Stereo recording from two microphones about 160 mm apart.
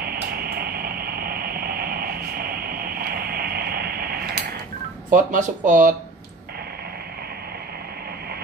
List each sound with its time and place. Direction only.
0.0 s vehicle: 70° right (ahead or behind)
5.1 s speech: 55° right (ahead or behind)